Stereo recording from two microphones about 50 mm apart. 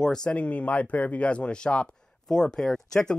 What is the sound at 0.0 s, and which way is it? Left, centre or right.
Speech, centre.